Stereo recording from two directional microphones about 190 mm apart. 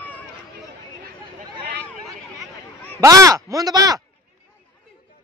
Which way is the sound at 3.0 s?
15° right (ahead or behind).